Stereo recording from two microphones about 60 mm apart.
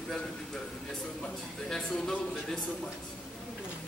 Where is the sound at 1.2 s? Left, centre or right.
Centre.